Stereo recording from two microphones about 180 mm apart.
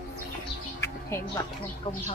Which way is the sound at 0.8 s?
15° left (ahead or behind).